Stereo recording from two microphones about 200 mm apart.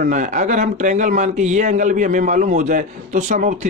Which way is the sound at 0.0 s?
40° right (ahead or behind).